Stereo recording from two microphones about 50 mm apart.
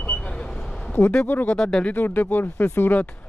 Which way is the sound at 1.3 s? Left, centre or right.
Left.